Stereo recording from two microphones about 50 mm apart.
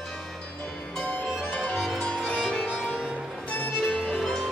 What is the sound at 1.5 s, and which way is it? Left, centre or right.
Music, left.